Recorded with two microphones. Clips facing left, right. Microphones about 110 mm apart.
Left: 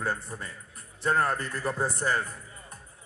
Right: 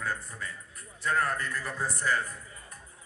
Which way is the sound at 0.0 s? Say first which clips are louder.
Left 3 dB; 30° left (ahead or behind).